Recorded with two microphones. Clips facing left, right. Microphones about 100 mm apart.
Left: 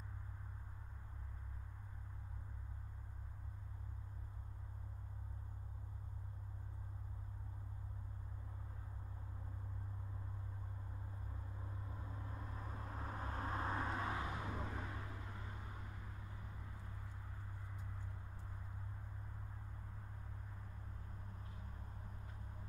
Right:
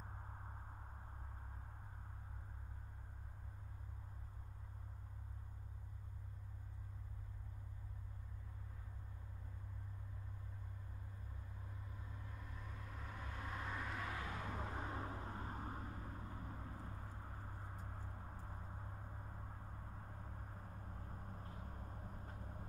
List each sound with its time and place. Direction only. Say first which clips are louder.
12.0 s vehicle: left 4 dB; 35° left (ahead or behind)
14.9 s vehicle: right 4 dB; 35° right (ahead or behind)
20.4 s vehicle: right 2 dB; 45° right (ahead or behind)